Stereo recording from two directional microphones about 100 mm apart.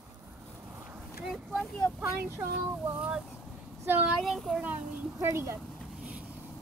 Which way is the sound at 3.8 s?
20° right (ahead or behind).